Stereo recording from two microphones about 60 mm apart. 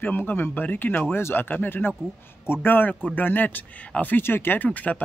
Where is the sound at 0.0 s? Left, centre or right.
Left.